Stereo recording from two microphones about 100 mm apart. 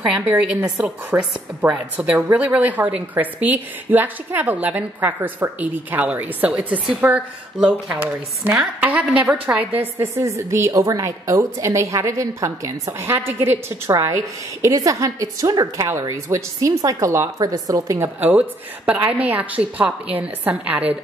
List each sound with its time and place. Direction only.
0.1 s a woman's voice: 15° right (ahead or behind)
9.7 s a woman's voice: 20° right (ahead or behind)
18.9 s a woman's voice: 15° right (ahead or behind)